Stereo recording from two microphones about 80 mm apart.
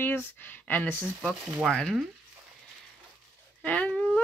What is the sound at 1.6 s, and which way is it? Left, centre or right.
Speech, centre.